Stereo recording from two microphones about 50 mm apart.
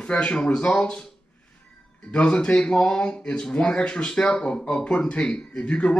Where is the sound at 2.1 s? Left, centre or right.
Left.